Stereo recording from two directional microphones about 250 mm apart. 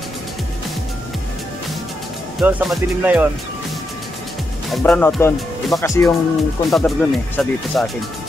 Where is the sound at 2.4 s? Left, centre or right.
Centre.